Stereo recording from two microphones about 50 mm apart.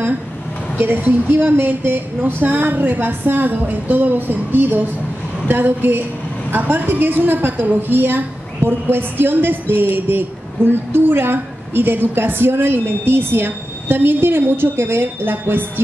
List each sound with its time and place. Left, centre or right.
1.3 s a woman's voice: right